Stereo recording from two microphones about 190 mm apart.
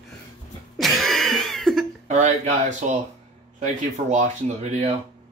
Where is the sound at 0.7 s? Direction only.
Centre (ahead or behind).